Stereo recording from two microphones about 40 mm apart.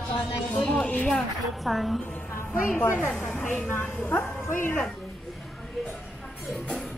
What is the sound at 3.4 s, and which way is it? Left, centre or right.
A woman's voice, left.